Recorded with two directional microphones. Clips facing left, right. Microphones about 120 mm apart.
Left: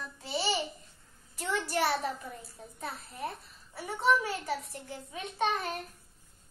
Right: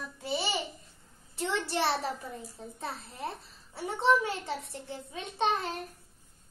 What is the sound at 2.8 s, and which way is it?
A child's voice, 30° right (ahead or behind).